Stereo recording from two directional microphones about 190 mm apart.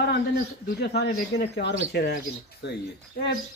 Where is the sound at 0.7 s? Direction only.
60° left (ahead or behind).